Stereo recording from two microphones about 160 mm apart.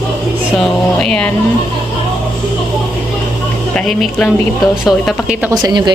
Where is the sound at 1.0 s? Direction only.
5° left (ahead or behind).